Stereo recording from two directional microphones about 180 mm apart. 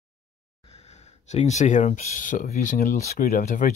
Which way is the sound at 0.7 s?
40° left (ahead or behind).